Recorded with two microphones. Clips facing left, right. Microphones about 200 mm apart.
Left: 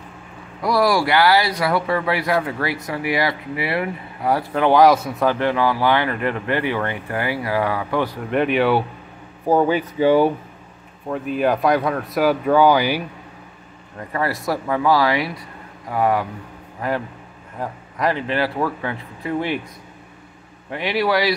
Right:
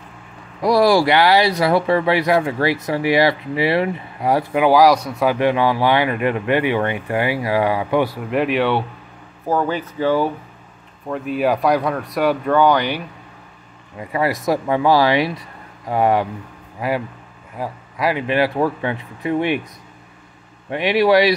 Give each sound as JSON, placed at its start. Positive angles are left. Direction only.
{"t": 0.6, "sound": "speech", "side_deg": -25}
{"t": 4.6, "sound": "speech", "side_deg": 0}
{"t": 5.2, "sound": "speech", "side_deg": -15}
{"t": 9.5, "sound": "speech", "side_deg": 15}
{"t": 11.1, "sound": "speech", "side_deg": 0}
{"t": 13.9, "sound": "speech", "side_deg": -15}
{"t": 16.8, "sound": "speech", "side_deg": -10}
{"t": 20.7, "sound": "speech", "side_deg": -20}